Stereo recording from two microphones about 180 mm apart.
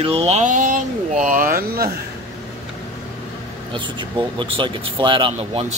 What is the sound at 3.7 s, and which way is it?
Speech, 25° right (ahead or behind).